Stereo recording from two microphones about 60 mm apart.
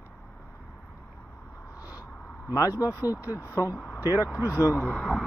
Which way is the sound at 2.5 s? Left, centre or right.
Left.